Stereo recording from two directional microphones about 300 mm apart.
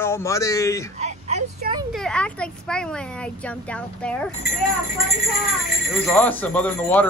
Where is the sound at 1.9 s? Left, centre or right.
Centre.